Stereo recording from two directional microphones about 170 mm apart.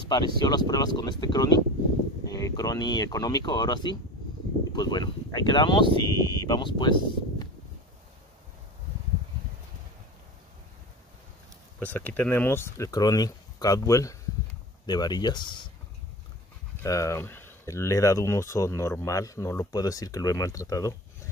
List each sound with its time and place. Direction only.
0.1 s speech: 25° left (ahead or behind)
11.8 s speech: 10° left (ahead or behind); by 15.7 s 25° left (ahead or behind)
16.8 s speech: 20° left (ahead or behind)